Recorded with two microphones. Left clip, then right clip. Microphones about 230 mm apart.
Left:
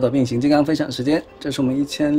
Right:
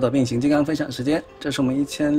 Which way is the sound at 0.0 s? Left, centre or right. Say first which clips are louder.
Left 2 dB; centre.